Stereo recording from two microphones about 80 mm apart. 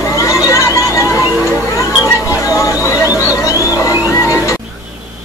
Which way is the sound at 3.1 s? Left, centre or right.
Centre.